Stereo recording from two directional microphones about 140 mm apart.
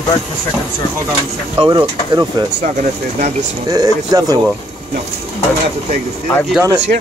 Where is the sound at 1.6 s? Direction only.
30° right (ahead or behind).